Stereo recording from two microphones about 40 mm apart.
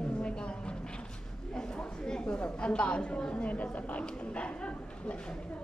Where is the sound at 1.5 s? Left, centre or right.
Centre.